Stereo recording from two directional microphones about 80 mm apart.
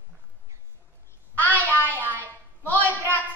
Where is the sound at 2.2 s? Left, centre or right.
Left.